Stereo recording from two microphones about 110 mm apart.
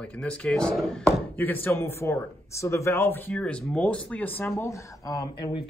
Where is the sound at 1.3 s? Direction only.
15° left (ahead or behind).